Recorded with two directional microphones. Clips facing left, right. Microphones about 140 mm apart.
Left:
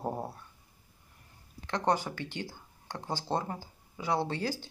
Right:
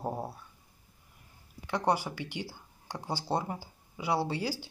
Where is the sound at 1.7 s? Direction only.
10° right (ahead or behind).